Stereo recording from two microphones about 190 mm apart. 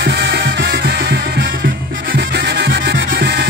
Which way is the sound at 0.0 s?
60° right (ahead or behind).